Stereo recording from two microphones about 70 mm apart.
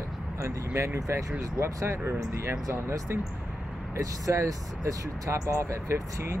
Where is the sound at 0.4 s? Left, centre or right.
Right.